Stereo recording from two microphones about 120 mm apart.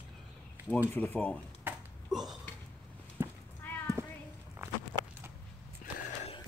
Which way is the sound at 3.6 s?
15° left (ahead or behind).